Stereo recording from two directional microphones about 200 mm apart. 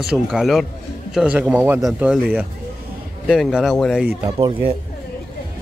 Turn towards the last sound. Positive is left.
turn(degrees=-20)  # may be behind; listen again after turning